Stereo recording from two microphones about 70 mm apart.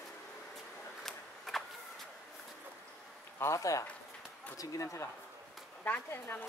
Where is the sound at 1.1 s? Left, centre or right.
Centre.